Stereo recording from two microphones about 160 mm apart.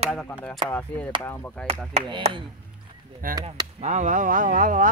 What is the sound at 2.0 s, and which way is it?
Speech, 30° right (ahead or behind).